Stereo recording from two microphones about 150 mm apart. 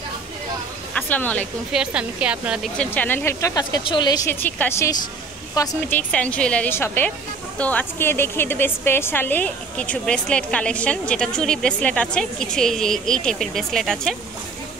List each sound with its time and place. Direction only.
0.9 s speech: 10° left (ahead or behind)
1.7 s a woman's voice: 5° right (ahead or behind)
2.8 s speech: 10° left (ahead or behind); by 4.3 s 30° left (ahead or behind)
4.3 s a woman's voice: 15° left (ahead or behind)
5.9 s a woman's voice: 10° left (ahead or behind)